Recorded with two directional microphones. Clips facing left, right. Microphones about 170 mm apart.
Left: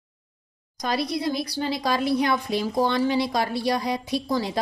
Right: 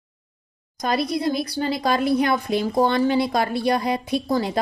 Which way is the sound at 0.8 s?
50° right (ahead or behind).